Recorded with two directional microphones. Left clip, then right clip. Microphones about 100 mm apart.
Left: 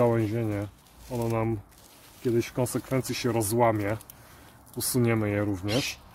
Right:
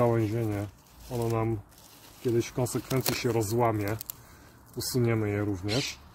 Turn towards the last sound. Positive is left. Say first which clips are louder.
# left 2 dB
turn(degrees=50)  # may be behind; listen again after turning